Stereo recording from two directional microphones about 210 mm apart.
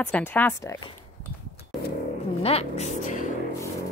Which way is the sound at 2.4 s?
30° left (ahead or behind).